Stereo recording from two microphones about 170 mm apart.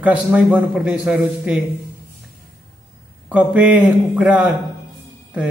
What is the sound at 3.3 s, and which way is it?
A man's voice, 10° right (ahead or behind).